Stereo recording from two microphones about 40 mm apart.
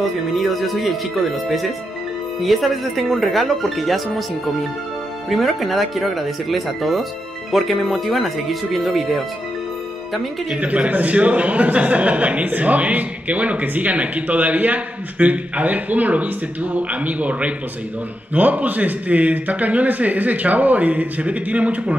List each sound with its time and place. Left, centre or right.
0.0 s speech: centre
5.3 s speech: centre
10.5 s speech: right